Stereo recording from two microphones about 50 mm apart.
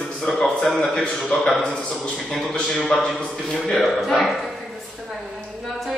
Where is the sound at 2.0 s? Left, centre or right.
Centre.